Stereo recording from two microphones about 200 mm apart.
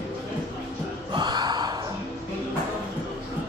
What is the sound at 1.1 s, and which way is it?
Gasp, 20° right (ahead or behind).